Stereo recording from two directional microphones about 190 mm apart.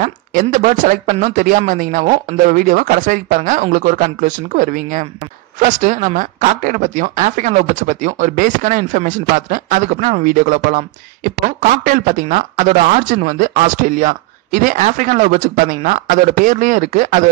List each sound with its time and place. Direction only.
0.0 s speech: 45° right (ahead or behind)
11.8 s speech: 40° right (ahead or behind)